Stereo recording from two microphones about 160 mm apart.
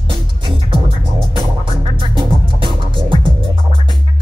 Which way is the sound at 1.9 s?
30° right (ahead or behind).